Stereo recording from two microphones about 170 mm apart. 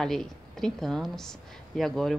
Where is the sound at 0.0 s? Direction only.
5° left (ahead or behind).